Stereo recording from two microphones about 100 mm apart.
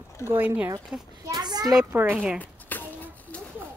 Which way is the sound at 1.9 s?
20° right (ahead or behind).